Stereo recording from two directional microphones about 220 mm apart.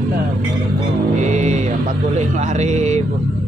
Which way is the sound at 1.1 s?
30° right (ahead or behind).